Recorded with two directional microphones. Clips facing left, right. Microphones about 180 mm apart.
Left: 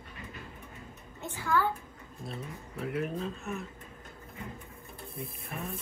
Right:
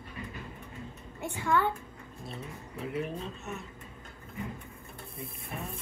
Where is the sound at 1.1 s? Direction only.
15° right (ahead or behind).